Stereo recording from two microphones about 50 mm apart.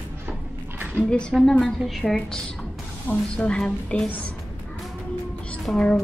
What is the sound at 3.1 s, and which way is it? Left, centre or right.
Speech, left.